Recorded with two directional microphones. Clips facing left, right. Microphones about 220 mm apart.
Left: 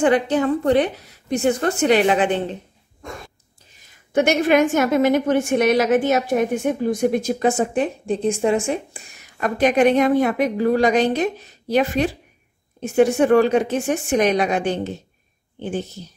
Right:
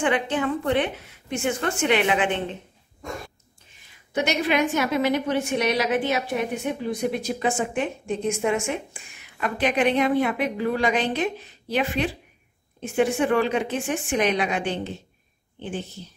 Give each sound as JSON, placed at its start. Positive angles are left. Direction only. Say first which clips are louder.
{"t": 0.0, "sound": "a woman's voice", "louder": "left 6 dB", "side_deg": 40}
{"t": 4.1, "sound": "a woman's voice", "louder": "left 7 dB", "side_deg": 50}